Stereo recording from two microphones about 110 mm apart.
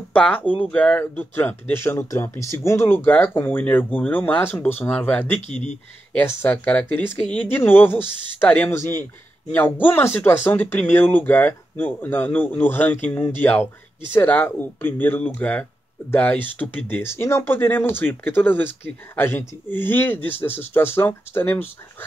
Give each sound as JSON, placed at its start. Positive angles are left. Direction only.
{"t": 0.1, "sound": "speech", "side_deg": 15}
{"t": 5.5, "sound": "speech", "side_deg": 90}
{"t": 6.1, "sound": "speech", "side_deg": 25}